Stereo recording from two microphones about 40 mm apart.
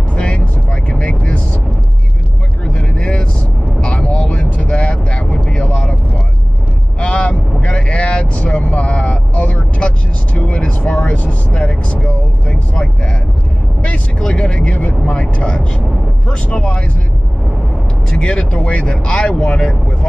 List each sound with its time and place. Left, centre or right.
0.1 s vehicle: left
2.6 s vehicle: left
14.4 s vehicle: left
15.3 s vehicle: left
16.3 s a sound: left
18.1 s vehicle: left